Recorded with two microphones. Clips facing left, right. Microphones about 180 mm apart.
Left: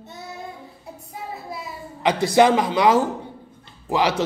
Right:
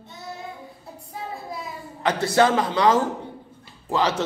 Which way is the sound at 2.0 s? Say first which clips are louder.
Left 3 dB; 15° left (ahead or behind).